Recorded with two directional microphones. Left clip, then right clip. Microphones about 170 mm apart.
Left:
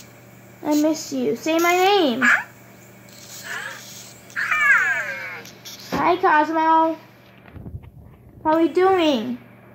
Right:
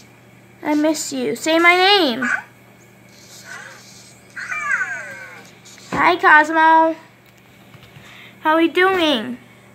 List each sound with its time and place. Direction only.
0.6 s speech: 5° right (ahead or behind)
2.1 s speech: 15° left (ahead or behind)
3.4 s a sound: 10° left (ahead or behind)
4.3 s cat: 15° left (ahead or behind)
5.9 s a woman's voice: 15° right (ahead or behind)
8.5 s speech: 5° right (ahead or behind)